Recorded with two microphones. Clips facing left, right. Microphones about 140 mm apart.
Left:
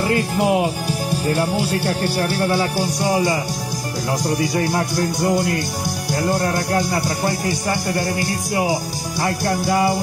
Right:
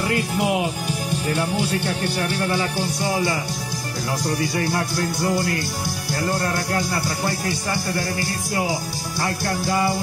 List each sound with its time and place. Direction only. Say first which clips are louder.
0.0 s speech: left 4 dB; 40° left (ahead or behind)
4.7 s music: left 3 dB; 15° left (ahead or behind)